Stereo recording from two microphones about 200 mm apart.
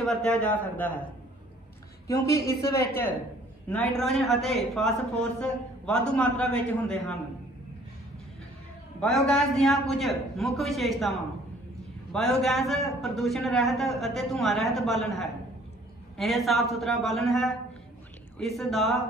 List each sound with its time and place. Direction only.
0.0 s a man's voice: 5° left (ahead or behind)
2.0 s a man's voice: 15° left (ahead or behind)
9.0 s a man's voice: centre (ahead or behind)